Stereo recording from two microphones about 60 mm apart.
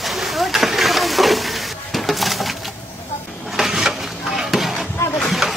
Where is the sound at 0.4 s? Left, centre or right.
Centre.